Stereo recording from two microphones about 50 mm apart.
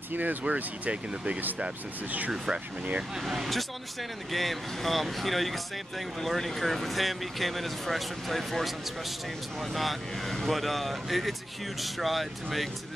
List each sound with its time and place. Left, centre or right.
0.1 s speech: right
2.3 s speech: centre
3.3 s speech: centre